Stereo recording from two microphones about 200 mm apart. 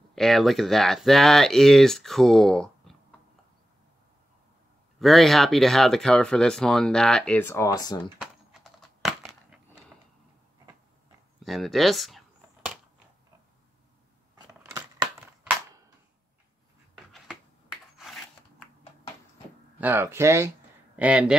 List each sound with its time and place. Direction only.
0.1 s speech: centre (ahead or behind)
5.0 s speech: centre (ahead or behind); by 8.1 s 20° left (ahead or behind)
9.0 s a sound: centre (ahead or behind)
11.3 s speech: centre (ahead or behind)
14.7 s scissors: 15° right (ahead or behind)
17.1 s a sound: centre (ahead or behind)
19.8 s speech: 10° right (ahead or behind)